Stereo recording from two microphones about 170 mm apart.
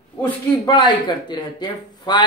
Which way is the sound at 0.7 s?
25° left (ahead or behind).